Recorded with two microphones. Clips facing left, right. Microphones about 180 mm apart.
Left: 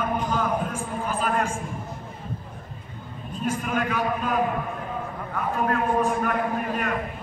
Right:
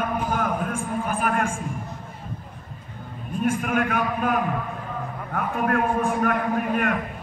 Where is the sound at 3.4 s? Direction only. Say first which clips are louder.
Right 3 dB; 55° right (ahead or behind).